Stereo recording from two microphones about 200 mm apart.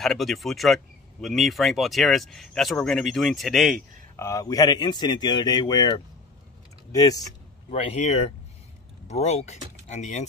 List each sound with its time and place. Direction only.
0.0 s speech: centre (ahead or behind)
4.2 s speech: 15° left (ahead or behind)
7.7 s speech: 30° left (ahead or behind)